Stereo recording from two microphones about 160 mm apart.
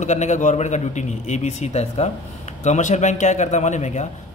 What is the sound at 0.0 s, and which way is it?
A man's voice, 45° left (ahead or behind).